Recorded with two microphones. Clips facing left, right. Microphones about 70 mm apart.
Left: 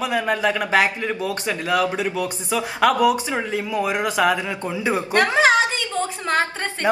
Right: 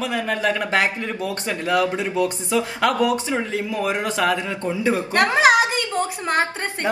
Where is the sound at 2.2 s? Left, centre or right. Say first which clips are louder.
Right 3 dB; centre.